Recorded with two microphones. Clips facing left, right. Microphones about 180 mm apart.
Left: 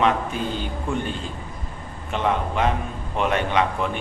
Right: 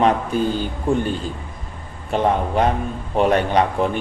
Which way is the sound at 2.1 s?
40° right (ahead or behind).